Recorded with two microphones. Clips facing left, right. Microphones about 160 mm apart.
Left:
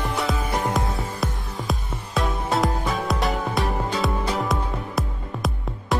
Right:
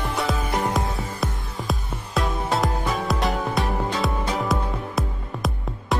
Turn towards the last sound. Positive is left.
turn(degrees=0)  # may be behind; listen again after turning